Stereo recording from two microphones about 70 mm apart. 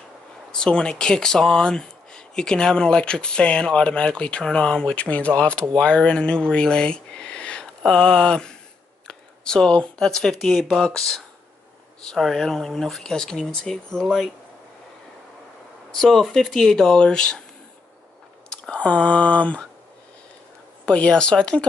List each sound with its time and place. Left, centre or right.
0.5 s speech: centre
15.9 s speech: centre
18.5 s speech: centre
20.8 s speech: centre